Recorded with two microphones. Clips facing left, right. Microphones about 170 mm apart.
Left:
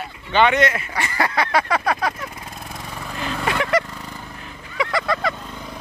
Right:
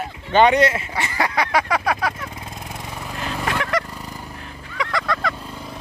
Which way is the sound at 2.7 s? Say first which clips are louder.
Even; 10° right (ahead or behind).